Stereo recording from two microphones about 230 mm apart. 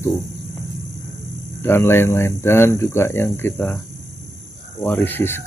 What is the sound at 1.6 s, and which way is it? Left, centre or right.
Speech, centre.